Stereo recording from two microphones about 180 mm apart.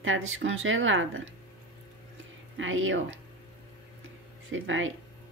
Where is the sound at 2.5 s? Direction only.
90° right.